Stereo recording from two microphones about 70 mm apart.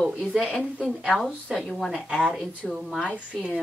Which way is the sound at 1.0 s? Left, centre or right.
Centre.